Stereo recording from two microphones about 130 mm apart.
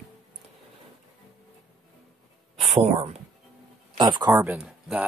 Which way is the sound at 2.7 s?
60° right (ahead or behind).